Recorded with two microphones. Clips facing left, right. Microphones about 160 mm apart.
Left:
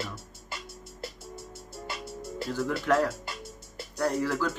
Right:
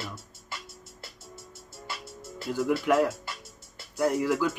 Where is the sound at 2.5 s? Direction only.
10° right (ahead or behind).